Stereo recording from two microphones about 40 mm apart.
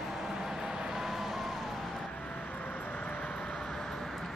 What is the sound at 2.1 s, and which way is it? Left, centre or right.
Vehicle, left.